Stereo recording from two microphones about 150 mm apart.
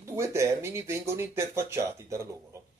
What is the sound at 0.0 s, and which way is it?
Speech, 20° right (ahead or behind).